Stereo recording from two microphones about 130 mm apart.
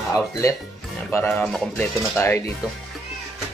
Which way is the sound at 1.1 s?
15° left (ahead or behind).